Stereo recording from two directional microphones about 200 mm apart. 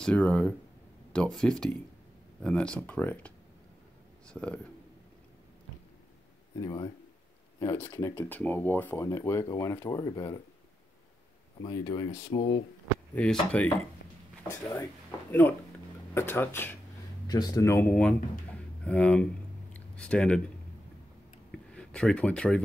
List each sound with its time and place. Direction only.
0.0 s speech: 5° left (ahead or behind)
6.6 s speech: 20° left (ahead or behind)
11.6 s speech: 25° left (ahead or behind)
13.1 s speech: 5° left (ahead or behind)
14.5 s speech: 15° left (ahead or behind)
16.2 s speech: 10° left (ahead or behind)
21.5 s a sound: 5° left (ahead or behind)